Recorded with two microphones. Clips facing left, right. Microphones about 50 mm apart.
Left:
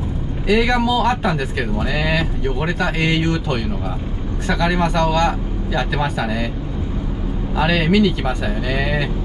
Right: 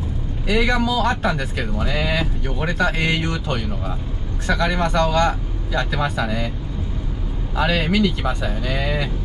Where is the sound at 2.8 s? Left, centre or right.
Centre.